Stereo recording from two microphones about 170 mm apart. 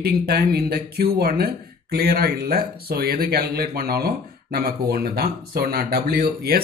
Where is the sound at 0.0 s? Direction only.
70° right (ahead or behind).